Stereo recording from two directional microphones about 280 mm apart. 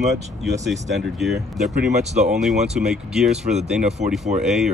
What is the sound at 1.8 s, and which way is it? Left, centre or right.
Speech, right.